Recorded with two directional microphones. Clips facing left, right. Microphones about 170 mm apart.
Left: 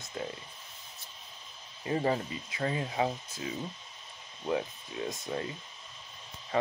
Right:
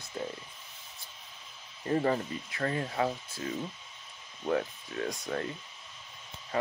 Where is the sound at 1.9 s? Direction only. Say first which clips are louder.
Right 1 dB; 15° left (ahead or behind).